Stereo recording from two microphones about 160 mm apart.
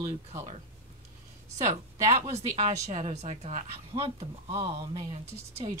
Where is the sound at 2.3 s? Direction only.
45° right (ahead or behind).